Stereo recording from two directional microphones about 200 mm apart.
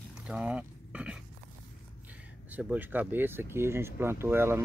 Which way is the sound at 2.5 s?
10° right (ahead or behind).